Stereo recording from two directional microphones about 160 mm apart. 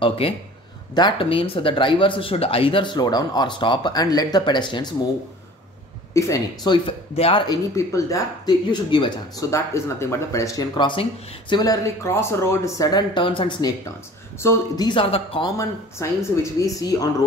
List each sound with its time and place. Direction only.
0.9 s speech: 30° left (ahead or behind)
6.1 s speech: 20° left (ahead or behind)
7.2 s speech: 35° left (ahead or behind)
7.4 s speech: 20° left (ahead or behind)
9.5 s speech: 20° left (ahead or behind); by 15.4 s 35° left (ahead or behind)
15.4 s speech: 20° left (ahead or behind)